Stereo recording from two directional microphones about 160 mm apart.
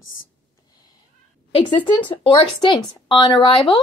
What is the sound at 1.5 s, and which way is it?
A woman's voice, 30° left (ahead or behind).